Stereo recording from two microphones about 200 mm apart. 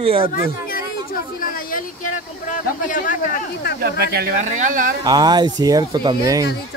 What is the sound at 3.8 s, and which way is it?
Speech, 50° right (ahead or behind).